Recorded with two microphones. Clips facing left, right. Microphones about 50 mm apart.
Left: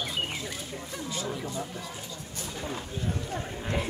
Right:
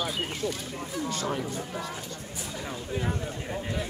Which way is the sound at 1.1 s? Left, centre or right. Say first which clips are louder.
Right 3 dB; right.